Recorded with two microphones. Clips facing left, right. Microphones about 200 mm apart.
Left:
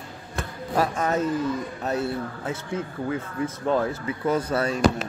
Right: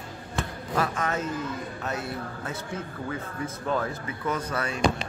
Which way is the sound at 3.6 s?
30° left (ahead or behind).